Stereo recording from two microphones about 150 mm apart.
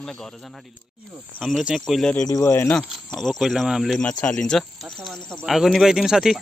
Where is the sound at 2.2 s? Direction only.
20° left (ahead or behind).